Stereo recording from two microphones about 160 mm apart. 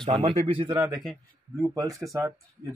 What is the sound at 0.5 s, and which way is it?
Speech, 35° right (ahead or behind).